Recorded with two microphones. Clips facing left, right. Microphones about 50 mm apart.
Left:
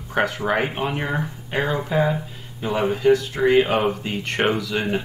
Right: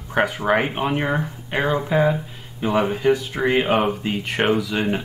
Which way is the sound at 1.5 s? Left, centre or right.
Right.